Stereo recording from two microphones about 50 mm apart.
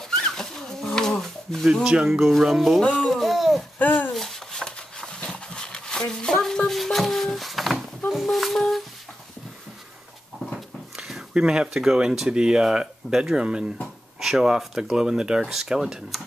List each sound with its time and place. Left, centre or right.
0.2 s dog: centre
1.7 s speech: centre
3.0 s a sound: centre
3.7 s speech: left
4.1 s a sound: centre
11.0 s speech: centre